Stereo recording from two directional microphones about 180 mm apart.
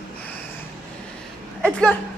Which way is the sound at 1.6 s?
5° left (ahead or behind).